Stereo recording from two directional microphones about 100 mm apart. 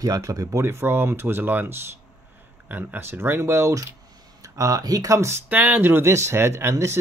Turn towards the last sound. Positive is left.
turn(degrees=-25)  # may be behind; listen again after turning